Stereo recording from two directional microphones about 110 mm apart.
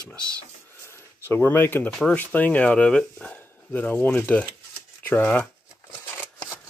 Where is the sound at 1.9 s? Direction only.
Centre (ahead or behind).